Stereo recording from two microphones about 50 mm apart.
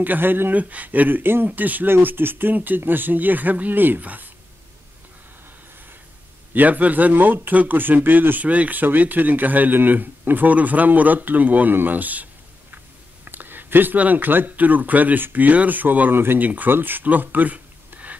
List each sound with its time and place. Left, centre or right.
0.0 s speech: right
6.5 s speech: right